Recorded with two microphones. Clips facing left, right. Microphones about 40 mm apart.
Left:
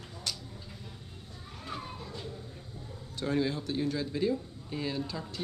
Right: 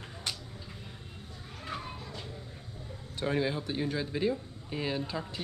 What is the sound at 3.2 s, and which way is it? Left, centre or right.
Speech, right.